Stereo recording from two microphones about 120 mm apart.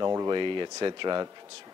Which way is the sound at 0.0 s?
30° right (ahead or behind).